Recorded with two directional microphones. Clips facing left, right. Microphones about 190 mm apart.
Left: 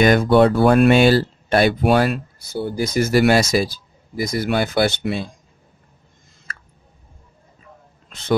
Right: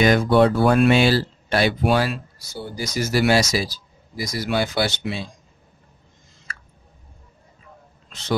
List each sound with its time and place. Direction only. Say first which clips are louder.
0.0 s speech: left 2 dB; 55° left (ahead or behind)